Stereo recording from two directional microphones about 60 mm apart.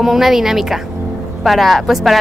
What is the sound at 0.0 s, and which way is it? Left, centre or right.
A woman's voice, centre.